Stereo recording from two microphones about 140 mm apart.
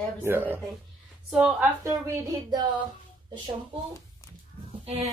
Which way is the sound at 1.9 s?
25° right (ahead or behind).